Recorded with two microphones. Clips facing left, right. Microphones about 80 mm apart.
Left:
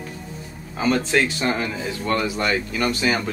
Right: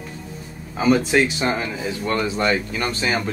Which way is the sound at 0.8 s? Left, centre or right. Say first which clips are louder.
Right 3 dB; centre.